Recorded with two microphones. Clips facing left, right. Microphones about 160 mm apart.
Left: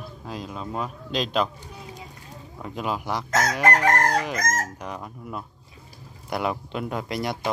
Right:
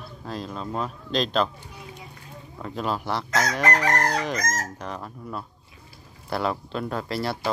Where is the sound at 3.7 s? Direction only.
50° left (ahead or behind).